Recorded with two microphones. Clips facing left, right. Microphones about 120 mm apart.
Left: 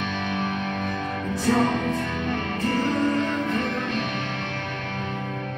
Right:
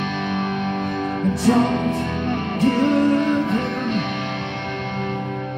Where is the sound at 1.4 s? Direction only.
25° right (ahead or behind).